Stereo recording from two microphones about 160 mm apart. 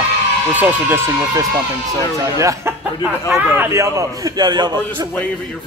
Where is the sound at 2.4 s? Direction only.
20° right (ahead or behind).